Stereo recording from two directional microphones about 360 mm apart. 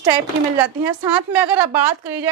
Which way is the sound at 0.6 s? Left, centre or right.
Centre.